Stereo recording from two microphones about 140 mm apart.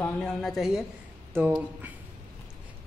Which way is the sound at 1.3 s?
15° right (ahead or behind).